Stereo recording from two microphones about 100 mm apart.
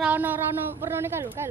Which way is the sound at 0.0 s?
15° right (ahead or behind).